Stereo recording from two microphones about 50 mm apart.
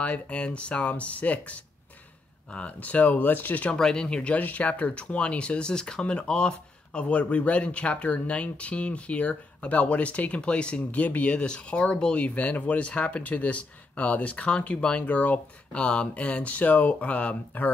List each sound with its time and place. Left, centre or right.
0.0 s speech: left
3.7 s speech: centre
12.4 s speech: left
15.8 s speech: centre